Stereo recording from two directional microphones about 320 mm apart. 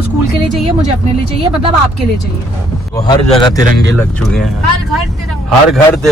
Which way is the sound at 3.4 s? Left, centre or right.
Centre.